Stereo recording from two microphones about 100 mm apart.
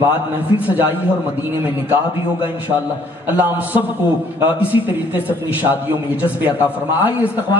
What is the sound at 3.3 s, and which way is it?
A man's voice, 15° right (ahead or behind).